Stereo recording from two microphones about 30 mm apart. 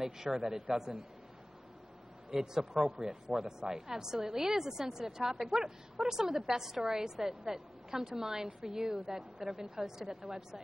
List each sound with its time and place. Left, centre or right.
0.0 s a woman's voice: centre
2.3 s a woman's voice: centre